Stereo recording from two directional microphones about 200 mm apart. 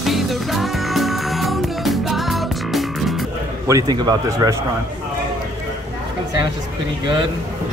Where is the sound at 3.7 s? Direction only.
20° right (ahead or behind).